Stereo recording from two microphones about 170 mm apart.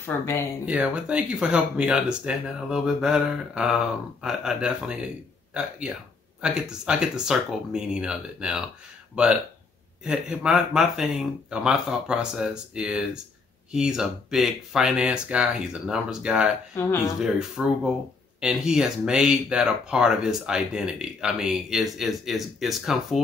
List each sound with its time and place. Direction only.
0.0 s speech: 15° left (ahead or behind)
0.7 s speech: 5° right (ahead or behind)
16.7 s speech: 15° left (ahead or behind)
17.2 s speech: 5° right (ahead or behind)